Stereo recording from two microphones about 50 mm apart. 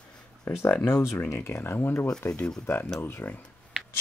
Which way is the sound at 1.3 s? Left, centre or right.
Left.